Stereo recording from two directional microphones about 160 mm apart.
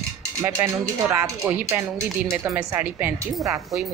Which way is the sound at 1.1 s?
15° right (ahead or behind).